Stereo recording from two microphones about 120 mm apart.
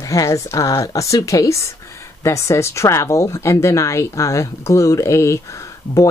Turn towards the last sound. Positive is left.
turn(degrees=25)  # may be behind; listen again after turning